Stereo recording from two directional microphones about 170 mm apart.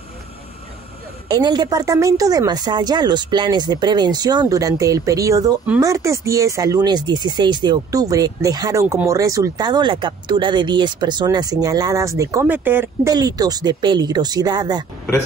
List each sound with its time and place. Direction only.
1.3 s speech: 25° right (ahead or behind)
13.1 s speech: 20° right (ahead or behind)